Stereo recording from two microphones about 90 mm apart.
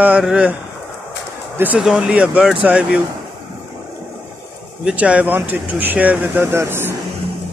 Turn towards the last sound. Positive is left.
turn(degrees=-25)  # may be behind; listen again after turning